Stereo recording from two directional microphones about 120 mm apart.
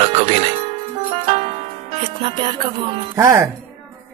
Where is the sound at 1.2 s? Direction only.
55° right (ahead or behind).